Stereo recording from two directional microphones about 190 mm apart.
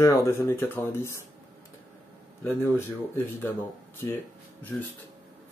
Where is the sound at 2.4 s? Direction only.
10° left (ahead or behind).